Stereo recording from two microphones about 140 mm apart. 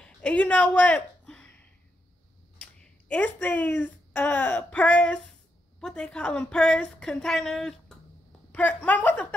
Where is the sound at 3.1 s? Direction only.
10° left (ahead or behind).